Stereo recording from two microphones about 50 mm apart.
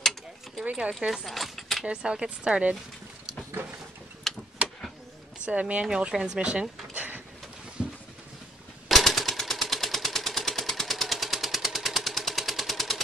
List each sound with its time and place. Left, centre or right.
1.0 s speech: centre
1.9 s speech: centre
4.2 s vehicle: centre
5.4 s speech: right
5.9 s speech: centre
7.8 s a sound: centre
8.8 s a sound: centre
10.6 s engine: centre